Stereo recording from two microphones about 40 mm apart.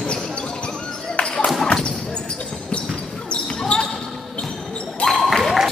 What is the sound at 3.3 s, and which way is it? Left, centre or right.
Basketball bounce, left.